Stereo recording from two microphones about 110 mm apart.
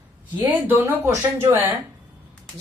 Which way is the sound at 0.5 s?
15° right (ahead or behind).